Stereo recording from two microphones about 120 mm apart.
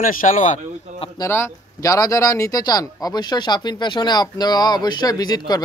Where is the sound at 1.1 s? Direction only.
20° left (ahead or behind).